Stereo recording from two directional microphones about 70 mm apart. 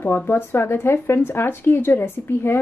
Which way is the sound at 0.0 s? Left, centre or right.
Left.